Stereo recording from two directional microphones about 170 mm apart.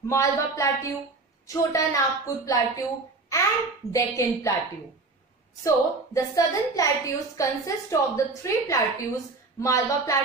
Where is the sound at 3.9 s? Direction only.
20° left (ahead or behind).